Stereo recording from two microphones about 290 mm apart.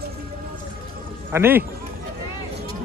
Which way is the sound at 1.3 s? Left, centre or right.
Centre.